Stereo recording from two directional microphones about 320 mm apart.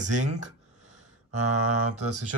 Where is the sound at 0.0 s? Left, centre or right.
Right.